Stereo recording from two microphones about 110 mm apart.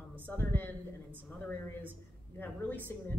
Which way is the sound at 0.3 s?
20° left (ahead or behind).